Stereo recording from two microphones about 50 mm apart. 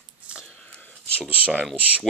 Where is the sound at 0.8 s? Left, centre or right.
Left.